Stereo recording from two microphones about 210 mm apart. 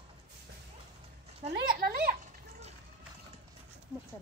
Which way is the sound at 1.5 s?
50° right (ahead or behind).